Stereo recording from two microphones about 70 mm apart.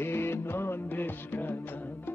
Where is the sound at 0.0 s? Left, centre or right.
Left.